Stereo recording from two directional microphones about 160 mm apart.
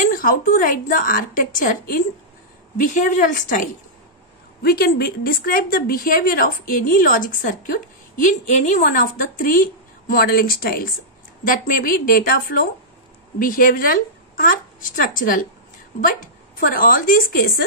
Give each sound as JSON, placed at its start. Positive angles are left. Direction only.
{"t": 0.0, "sound": "a woman's voice", "side_deg": 60}
{"t": 4.6, "sound": "a woman's voice", "side_deg": 70}